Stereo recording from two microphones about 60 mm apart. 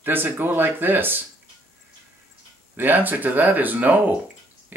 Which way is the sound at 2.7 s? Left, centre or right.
Right.